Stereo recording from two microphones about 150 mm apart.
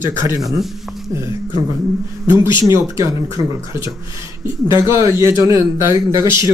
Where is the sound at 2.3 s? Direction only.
30° left (ahead or behind).